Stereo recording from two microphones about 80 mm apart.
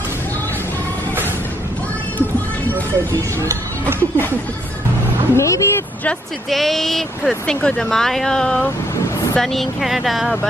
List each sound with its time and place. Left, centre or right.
3.2 s speech: right
5.3 s speech: left
6.5 s speech: centre